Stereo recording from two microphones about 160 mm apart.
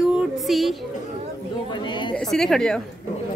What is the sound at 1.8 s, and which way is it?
Speech, 30° left (ahead or behind).